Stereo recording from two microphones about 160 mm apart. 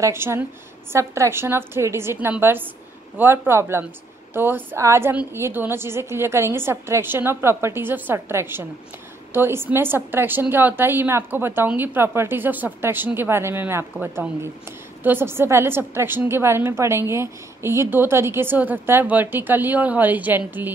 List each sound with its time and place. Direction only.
0.0 s a woman's voice: 15° right (ahead or behind)